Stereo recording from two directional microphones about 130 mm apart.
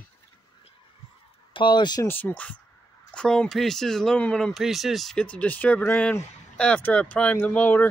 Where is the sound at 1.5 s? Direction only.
35° left (ahead or behind).